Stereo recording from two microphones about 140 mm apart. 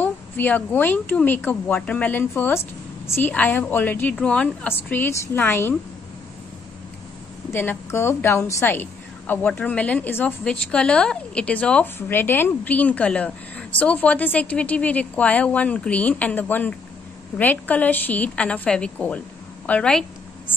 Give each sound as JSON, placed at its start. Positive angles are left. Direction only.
{"t": 0.0, "sound": "a woman's voice", "side_deg": 15}
{"t": 7.5, "sound": "a woman's voice", "side_deg": 20}